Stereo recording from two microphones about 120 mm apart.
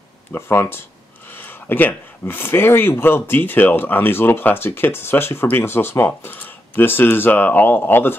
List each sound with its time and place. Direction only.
0.3 s speech: 20° left (ahead or behind)